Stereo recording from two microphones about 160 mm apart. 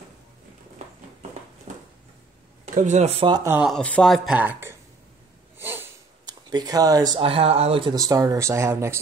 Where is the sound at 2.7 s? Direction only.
45° right (ahead or behind).